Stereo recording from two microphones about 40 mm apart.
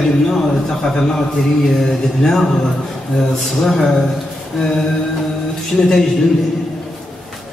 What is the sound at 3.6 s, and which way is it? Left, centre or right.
Speech, centre.